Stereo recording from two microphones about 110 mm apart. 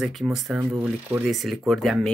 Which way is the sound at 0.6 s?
15° right (ahead or behind).